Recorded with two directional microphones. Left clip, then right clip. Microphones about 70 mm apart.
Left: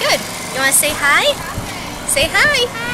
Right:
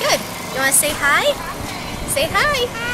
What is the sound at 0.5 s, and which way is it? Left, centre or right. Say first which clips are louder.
Speech: left 2 dB; centre.